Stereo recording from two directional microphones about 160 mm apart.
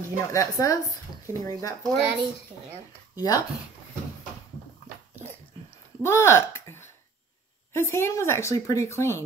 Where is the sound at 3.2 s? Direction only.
20° left (ahead or behind).